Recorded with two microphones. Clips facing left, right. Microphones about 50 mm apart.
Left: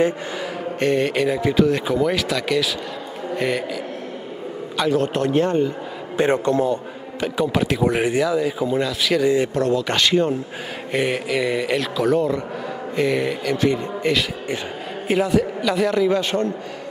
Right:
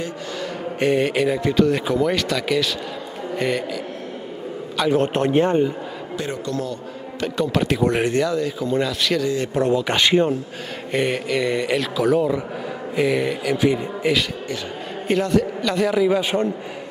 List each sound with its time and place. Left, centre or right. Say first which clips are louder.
0.7 s speech: right 1 dB; centre
4.9 s a man's voice: right 2 dB; right
6.1 s a man's voice: left 9 dB; left
7.2 s speech: left 1 dB; centre
9.2 s speech: left 5 dB; centre
9.6 s speech: right 1 dB; centre
10.9 s speech: even; centre
15.0 s speech: even; centre